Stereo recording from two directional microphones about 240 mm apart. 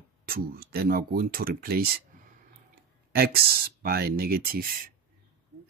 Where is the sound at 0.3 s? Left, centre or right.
Right.